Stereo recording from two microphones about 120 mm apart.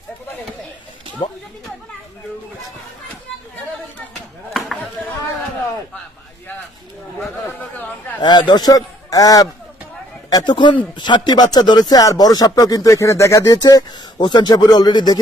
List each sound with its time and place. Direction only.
1.2 s speech: 45° left (ahead or behind)
7.4 s a sound: 15° left (ahead or behind)
8.2 s speech: 40° left (ahead or behind)
10.3 s speech: 40° left (ahead or behind)